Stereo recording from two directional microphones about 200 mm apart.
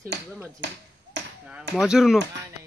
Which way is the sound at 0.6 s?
60° right (ahead or behind).